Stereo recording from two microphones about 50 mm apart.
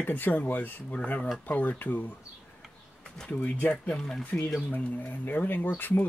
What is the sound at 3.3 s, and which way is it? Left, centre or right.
Speech, left.